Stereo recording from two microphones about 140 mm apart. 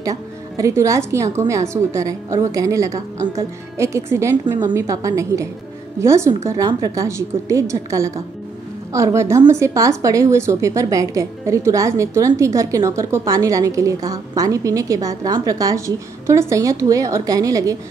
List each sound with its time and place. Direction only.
0.0 s a woman's voice: 25° right (ahead or behind)